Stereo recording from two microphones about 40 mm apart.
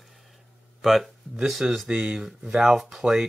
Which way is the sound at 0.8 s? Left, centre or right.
Centre.